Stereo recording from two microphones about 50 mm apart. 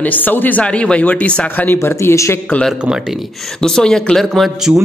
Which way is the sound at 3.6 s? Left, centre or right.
Centre.